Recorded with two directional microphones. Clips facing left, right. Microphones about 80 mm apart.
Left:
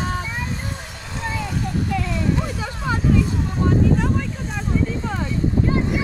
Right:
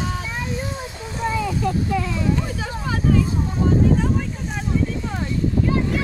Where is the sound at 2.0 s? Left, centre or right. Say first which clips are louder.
Right 1 dB; centre.